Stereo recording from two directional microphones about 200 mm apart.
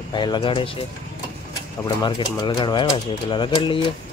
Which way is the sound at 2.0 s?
20° left (ahead or behind).